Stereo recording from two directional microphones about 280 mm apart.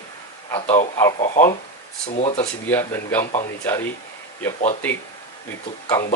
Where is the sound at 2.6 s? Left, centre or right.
Centre.